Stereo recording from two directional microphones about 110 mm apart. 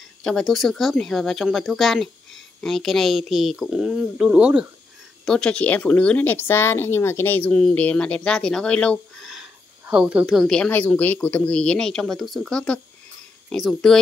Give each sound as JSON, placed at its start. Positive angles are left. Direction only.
{"t": 0.2, "sound": "speech", "side_deg": 5}
{"t": 5.2, "sound": "speech", "side_deg": 5}
{"t": 9.3, "sound": "a sound", "side_deg": -5}
{"t": 10.7, "sound": "speech", "side_deg": 15}